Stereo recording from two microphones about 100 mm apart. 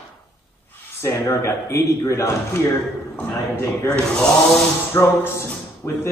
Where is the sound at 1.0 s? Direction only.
25° left (ahead or behind).